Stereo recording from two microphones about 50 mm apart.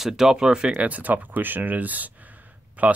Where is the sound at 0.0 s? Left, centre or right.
Centre.